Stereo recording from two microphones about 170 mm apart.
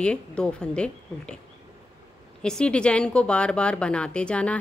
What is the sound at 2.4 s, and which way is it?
Speech, 5° left (ahead or behind).